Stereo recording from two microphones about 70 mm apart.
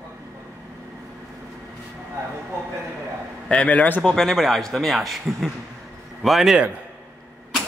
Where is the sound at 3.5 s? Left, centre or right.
Centre.